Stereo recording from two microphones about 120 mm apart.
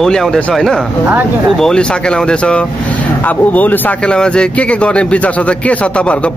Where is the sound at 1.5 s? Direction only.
5° left (ahead or behind).